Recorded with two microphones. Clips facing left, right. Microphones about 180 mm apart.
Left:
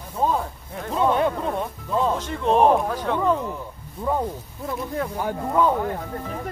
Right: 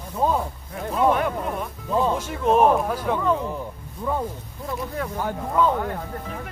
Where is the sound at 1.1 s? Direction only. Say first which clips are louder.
Left 2 dB; 25° left (ahead or behind).